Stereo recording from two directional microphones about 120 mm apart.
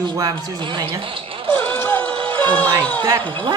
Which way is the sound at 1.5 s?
15° left (ahead or behind).